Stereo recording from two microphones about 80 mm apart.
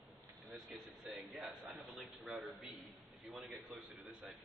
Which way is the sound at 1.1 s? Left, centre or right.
Centre.